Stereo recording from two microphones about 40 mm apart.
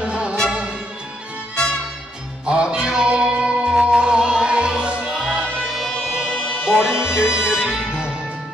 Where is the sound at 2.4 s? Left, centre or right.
Right.